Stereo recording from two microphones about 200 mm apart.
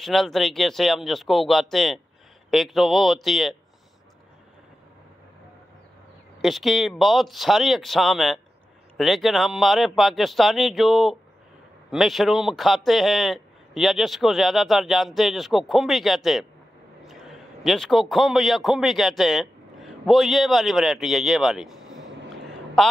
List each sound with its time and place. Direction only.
0.0 s a man's voice: centre (ahead or behind)
6.4 s a man's voice: centre (ahead or behind)